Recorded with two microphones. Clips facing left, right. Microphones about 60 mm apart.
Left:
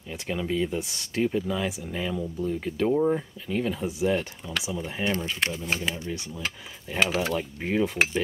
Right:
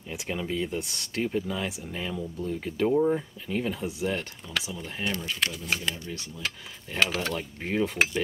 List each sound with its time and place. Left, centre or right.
0.1 s speech: centre
5.0 s speech: left
5.9 s speech: centre